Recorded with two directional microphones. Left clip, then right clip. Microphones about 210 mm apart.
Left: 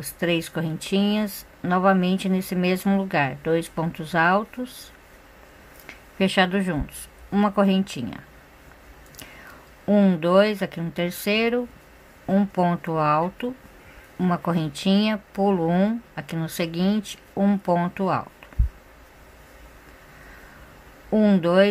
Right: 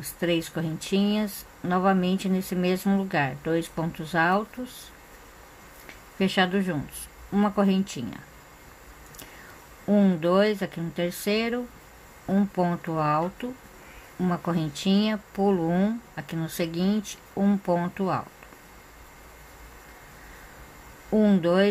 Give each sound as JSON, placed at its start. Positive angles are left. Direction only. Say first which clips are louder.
{"t": 0.0, "sound": "speech", "louder": "left 2 dB", "side_deg": 15}
{"t": 5.9, "sound": "a sound", "louder": "left 4 dB", "side_deg": 15}
{"t": 7.3, "sound": "speech", "louder": "left 4 dB", "side_deg": 15}
{"t": 9.8, "sound": "speech", "louder": "left 3 dB", "side_deg": 15}
{"t": 21.1, "sound": "speech", "louder": "left 3 dB", "side_deg": 15}